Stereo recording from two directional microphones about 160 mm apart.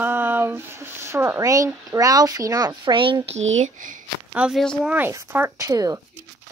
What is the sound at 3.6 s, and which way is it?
Speech, 55° right (ahead or behind).